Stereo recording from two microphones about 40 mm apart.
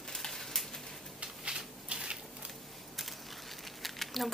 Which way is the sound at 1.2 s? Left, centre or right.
Right.